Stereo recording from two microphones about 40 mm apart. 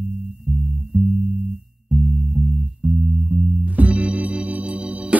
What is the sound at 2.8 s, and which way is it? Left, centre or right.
Music, right.